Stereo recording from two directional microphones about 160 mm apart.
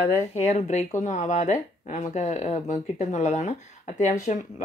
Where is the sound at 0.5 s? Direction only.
45° left (ahead or behind).